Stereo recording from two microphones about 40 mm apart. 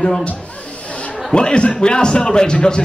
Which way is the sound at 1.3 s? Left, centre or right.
Left.